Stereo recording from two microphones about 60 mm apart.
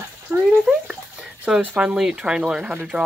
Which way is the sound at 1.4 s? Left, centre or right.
Centre.